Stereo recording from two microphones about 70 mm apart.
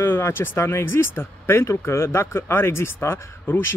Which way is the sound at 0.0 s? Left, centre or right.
Left.